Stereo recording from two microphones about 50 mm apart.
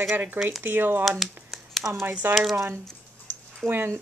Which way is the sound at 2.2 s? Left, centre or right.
Right.